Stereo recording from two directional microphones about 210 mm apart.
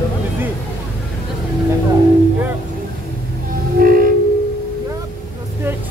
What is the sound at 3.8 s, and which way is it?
Music, 40° right (ahead or behind).